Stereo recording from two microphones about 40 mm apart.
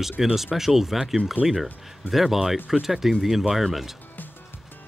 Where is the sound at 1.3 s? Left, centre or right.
Right.